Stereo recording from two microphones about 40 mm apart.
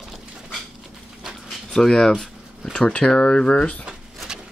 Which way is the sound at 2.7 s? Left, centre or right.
Left.